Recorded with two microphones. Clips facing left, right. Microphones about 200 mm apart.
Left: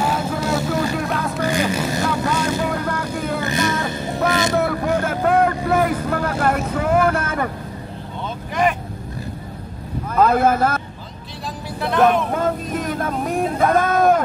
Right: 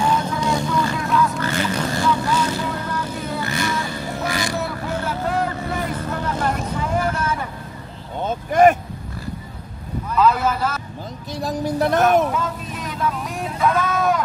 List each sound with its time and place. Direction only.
0.2 s vehicle: 5° left (ahead or behind)
0.7 s vehicle: 50° left (ahead or behind)
1.4 s vehicle: 15° left (ahead or behind)
2.0 s vehicle: 50° left (ahead or behind)
3.4 s vehicle: 20° left (ahead or behind)
3.8 s a sound: 20° left (ahead or behind)
4.3 s vehicle: 20° left (ahead or behind)
4.6 s vehicle: 55° left (ahead or behind)
8.2 s vehicle: 45° right (ahead or behind)
10.0 s vehicle: 50° left (ahead or behind)
11.4 s vehicle: 45° right (ahead or behind)
12.3 s a sound: 55° left (ahead or behind)